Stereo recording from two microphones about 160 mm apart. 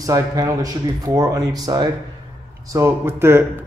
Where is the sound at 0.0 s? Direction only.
20° right (ahead or behind).